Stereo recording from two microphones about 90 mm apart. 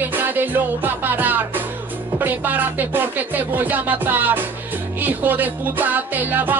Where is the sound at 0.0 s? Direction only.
20° right (ahead or behind).